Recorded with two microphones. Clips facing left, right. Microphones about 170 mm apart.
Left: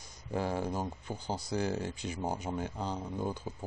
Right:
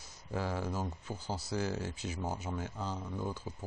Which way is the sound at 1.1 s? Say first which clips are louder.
Left 4 dB; 5° right (ahead or behind).